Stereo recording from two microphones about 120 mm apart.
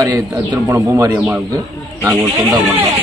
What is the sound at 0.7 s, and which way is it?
Speech, 25° right (ahead or behind).